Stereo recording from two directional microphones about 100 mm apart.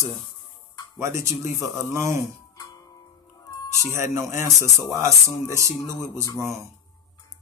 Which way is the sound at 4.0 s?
30° right (ahead or behind).